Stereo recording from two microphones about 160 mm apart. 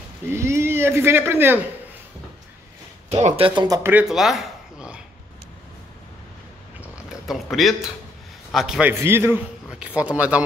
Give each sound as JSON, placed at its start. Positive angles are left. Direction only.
{"t": 0.3, "sound": "a man's voice", "side_deg": -15}
{"t": 3.1, "sound": "speech", "side_deg": -40}
{"t": 3.9, "sound": "a sound", "side_deg": -5}
{"t": 6.8, "sound": "mechanisms", "side_deg": -5}
{"t": 8.5, "sound": "a man's voice", "side_deg": 0}
{"t": 8.9, "sound": "a man's voice", "side_deg": -15}